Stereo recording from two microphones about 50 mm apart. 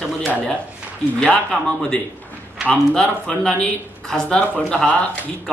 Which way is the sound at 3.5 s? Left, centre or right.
Left.